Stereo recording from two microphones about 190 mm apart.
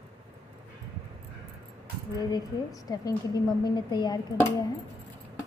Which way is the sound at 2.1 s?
20° left (ahead or behind).